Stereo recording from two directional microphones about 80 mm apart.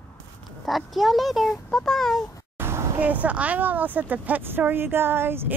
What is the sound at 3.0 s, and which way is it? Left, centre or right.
Speech, centre.